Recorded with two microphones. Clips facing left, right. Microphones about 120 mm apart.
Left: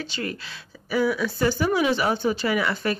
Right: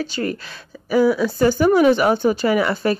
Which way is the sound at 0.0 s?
40° right (ahead or behind).